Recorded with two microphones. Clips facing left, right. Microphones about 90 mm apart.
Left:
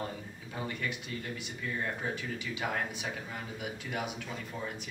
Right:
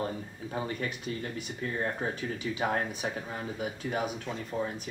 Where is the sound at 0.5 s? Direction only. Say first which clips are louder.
Right 3 dB; 35° right (ahead or behind).